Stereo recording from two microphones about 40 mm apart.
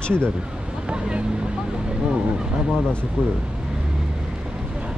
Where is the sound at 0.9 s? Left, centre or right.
Right.